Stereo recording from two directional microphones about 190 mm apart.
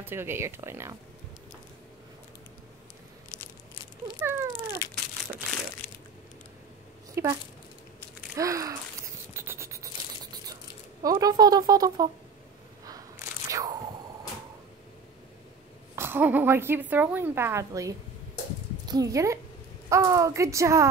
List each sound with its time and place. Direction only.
0.0 s a woman's voice: 10° right (ahead or behind)
4.2 s a woman's voice: 15° right (ahead or behind)
5.8 s crushing: 10° left (ahead or behind)
7.2 s a woman's voice: 15° right (ahead or behind)
8.4 s a woman's voice: 15° right (ahead or behind)
9.4 s a sound: 15° right (ahead or behind)
10.5 s speech: 20° right (ahead or behind)
12.8 s crunch: 20° right (ahead or behind)
16.0 s a woman's voice: 10° right (ahead or behind)